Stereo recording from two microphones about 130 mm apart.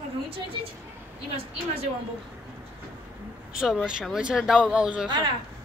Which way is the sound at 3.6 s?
Centre (ahead or behind).